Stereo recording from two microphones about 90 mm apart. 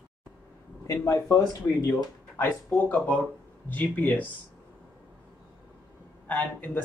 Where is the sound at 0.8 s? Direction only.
35° left (ahead or behind).